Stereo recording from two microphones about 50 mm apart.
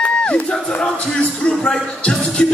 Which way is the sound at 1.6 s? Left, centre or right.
Centre.